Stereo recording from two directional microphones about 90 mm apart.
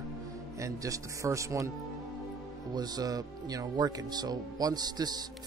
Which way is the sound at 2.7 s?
50° right (ahead or behind).